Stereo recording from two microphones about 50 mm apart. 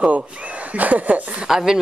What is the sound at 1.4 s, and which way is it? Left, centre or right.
Speech, centre.